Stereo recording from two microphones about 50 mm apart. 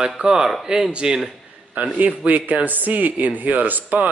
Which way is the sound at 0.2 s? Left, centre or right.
Centre.